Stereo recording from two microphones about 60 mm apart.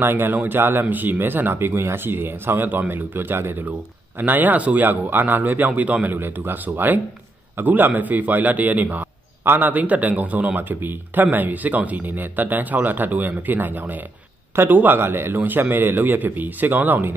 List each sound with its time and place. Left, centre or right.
0.0 s speech: right
6.1 s a man's voice: right